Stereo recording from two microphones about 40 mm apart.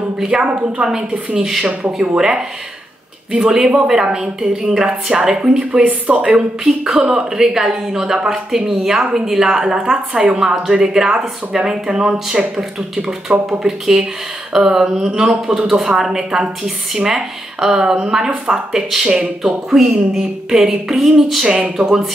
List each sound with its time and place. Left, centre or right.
0.3 s a woman's voice: right
1.3 s a woman's voice: centre
5.6 s a woman's voice: right
6.6 s a woman's voice: centre
13.5 s a woman's voice: centre
15.5 s a woman's voice: centre